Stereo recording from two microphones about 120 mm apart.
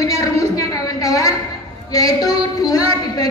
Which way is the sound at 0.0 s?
30° left (ahead or behind).